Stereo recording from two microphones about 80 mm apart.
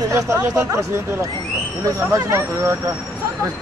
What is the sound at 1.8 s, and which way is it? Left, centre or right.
Speech, right.